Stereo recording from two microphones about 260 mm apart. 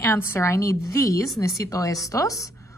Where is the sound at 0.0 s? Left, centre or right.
Centre.